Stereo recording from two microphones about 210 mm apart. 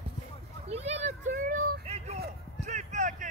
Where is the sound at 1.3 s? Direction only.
45° right (ahead or behind).